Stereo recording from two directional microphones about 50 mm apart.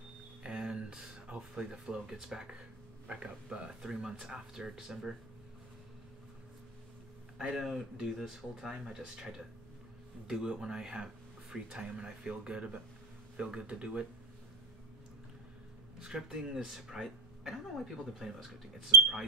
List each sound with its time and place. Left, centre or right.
0.4 s a sound: centre
1.5 s speech: centre
7.3 s speech: centre
16.0 s speech: centre